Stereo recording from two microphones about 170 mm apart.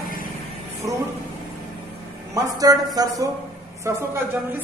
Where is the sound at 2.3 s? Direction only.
20° right (ahead or behind).